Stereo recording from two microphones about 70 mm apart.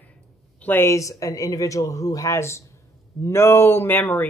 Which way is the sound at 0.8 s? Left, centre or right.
Left.